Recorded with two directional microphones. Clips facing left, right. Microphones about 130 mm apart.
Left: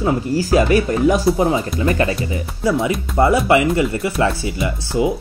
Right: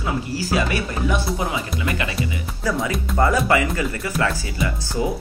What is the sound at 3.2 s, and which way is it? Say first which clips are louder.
Speech: left 5 dB; 25° left (ahead or behind).